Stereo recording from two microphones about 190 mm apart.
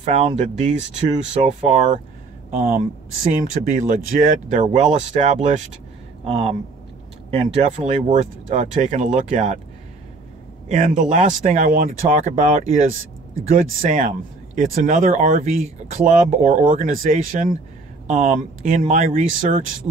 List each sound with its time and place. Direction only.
0.0 s speech: 40° right (ahead or behind)
10.7 s speech: 40° right (ahead or behind)